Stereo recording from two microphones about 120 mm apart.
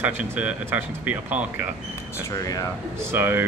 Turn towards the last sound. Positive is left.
turn(degrees=-15)  # may be behind; listen again after turning